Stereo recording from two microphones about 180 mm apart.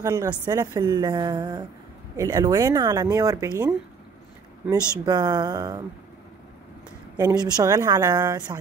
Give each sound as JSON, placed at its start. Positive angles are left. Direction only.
{"t": 0.0, "sound": "a woman's voice", "side_deg": -20}
{"t": 5.0, "sound": "a woman's voice", "side_deg": -20}
{"t": 7.2, "sound": "a woman's voice", "side_deg": -20}